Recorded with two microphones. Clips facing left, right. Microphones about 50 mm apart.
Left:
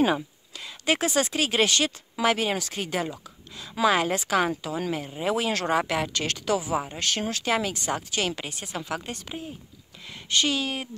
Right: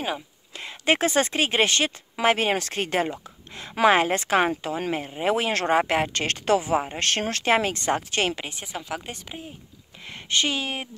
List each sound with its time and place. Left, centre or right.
0.6 s speech: right
7.0 s speech: right
8.4 s speech: right
8.9 s speech: centre
10.0 s speech: right